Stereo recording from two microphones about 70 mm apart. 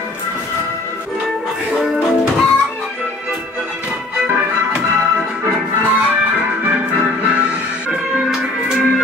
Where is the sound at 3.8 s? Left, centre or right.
Centre.